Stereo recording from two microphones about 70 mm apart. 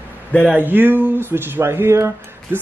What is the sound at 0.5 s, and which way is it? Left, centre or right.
Speech, right.